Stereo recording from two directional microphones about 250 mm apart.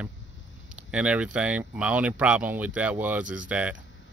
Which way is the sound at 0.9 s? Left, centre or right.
Centre.